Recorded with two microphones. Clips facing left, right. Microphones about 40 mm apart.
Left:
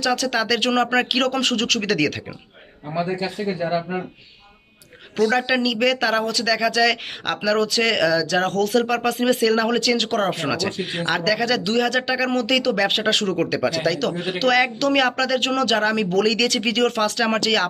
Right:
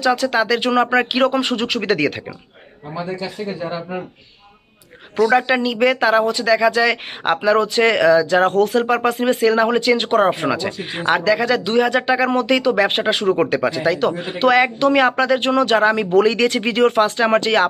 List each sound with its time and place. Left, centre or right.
0.0 s speech: centre
5.1 s speech: centre
5.5 s speech: right
13.1 s speech: right
13.5 s speech: right